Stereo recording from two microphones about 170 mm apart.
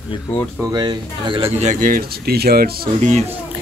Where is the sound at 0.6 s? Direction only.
25° right (ahead or behind).